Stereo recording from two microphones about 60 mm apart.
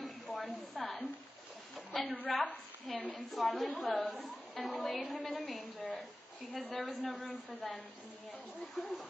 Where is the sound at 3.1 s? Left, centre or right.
Centre.